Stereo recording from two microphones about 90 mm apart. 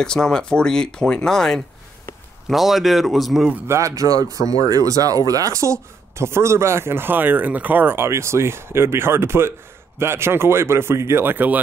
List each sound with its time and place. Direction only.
0.0 s speech: 5° left (ahead or behind)
3.6 s speech: 35° right (ahead or behind)